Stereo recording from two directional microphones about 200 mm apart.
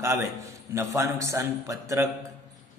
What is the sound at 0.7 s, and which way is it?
A man's voice, 15° right (ahead or behind).